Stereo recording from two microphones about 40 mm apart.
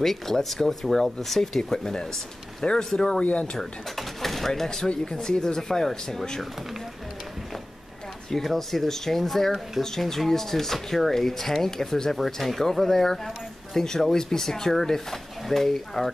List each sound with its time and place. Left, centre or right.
0.0 s speech: centre
4.6 s speech: centre
8.3 s speech: centre